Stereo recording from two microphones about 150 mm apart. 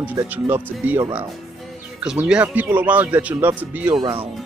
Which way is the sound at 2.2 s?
10° right (ahead or behind).